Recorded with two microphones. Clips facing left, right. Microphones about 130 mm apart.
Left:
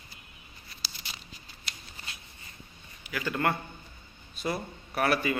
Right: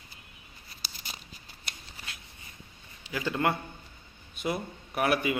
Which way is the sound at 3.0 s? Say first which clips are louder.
Right 1 dB; 25° right (ahead or behind).